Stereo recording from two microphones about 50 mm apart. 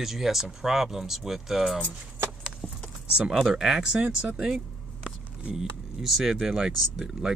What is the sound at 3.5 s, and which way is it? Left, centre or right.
Speech, centre.